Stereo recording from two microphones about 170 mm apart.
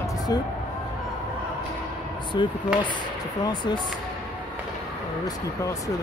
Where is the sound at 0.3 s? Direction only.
25° left (ahead or behind).